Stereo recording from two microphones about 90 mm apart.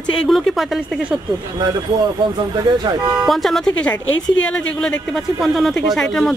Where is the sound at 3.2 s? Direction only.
Centre (ahead or behind).